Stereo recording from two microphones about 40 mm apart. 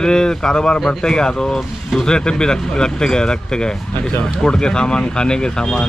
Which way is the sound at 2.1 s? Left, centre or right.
Left.